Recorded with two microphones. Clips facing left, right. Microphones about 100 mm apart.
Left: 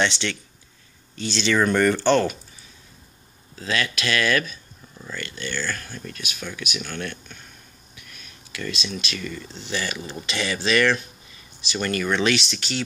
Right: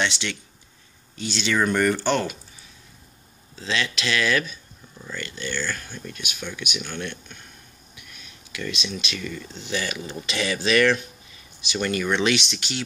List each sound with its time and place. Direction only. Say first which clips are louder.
0.0 s speech: left 3 dB; 10° right (ahead or behind)
3.5 s speech: left 1 dB; 20° right (ahead or behind)
4.0 s speech: left 1 dB; centre (ahead or behind)
5.7 s speech: left 1 dB; 10° right (ahead or behind)
7.9 s a sound: even; 15° right (ahead or behind)
9.6 s speech: even; 20° right (ahead or behind)